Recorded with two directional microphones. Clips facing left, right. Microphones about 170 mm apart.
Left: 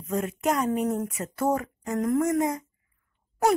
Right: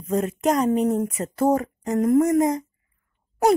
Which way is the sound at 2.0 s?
20° right (ahead or behind).